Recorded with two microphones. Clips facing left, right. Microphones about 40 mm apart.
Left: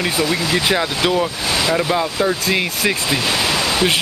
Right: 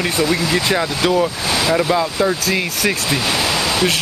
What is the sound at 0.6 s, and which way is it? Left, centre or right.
Speech, centre.